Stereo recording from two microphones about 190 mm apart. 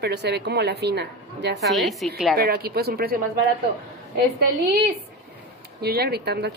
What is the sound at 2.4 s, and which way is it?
Speech, 55° right (ahead or behind).